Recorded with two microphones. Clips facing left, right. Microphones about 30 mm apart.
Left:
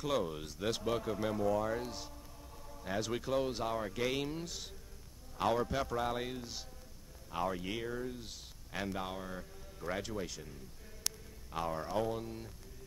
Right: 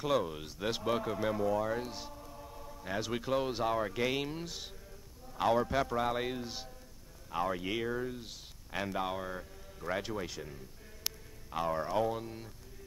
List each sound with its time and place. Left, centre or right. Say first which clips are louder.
0.0 s speech: right 3 dB; centre